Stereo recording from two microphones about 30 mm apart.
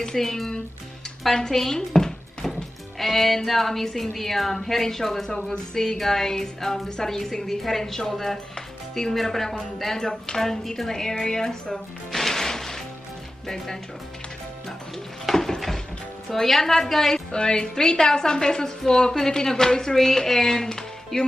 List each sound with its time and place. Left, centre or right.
0.1 s a woman's voice: centre
3.0 s a woman's voice: centre
12.1 s music: centre
15.3 s a sound: centre
16.3 s speech: centre
17.3 s a woman's voice: left